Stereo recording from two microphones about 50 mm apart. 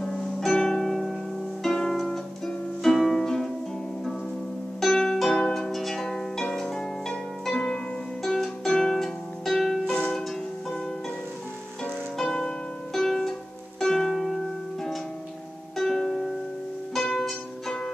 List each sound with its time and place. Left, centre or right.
0.0 s music: centre
4.7 s harp: centre
8.2 s music: centre
11.8 s music: centre